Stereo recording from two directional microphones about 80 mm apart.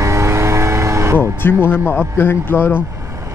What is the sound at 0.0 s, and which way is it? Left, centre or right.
Vehicle, right.